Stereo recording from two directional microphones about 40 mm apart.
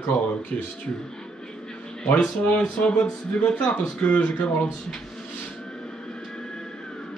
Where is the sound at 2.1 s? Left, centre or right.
Left.